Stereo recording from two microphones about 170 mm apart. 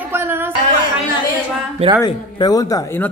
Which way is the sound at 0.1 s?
15° right (ahead or behind).